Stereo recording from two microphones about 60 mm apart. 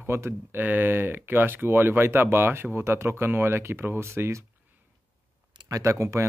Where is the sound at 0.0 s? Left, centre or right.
Right.